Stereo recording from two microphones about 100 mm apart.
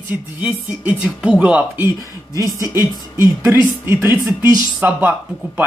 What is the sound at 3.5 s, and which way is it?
Speech, 25° right (ahead or behind).